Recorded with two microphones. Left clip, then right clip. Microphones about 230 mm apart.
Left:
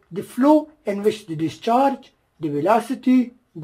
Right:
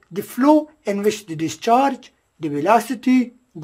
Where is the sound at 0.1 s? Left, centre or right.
Centre.